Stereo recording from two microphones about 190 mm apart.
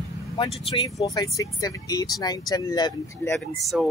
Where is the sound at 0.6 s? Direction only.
25° left (ahead or behind).